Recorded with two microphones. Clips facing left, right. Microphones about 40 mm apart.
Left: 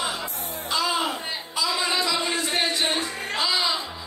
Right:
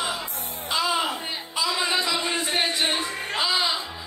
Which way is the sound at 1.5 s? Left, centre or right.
Centre.